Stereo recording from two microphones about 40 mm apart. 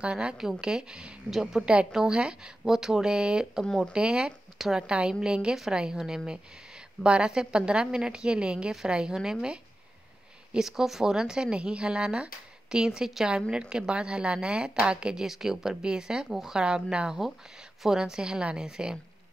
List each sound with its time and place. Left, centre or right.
0.0 s a woman's voice: right
1.4 s speech: centre
2.0 s a woman's voice: right
10.6 s a woman's voice: centre
15.2 s speech: centre
16.3 s speech: centre
16.5 s a woman's voice: right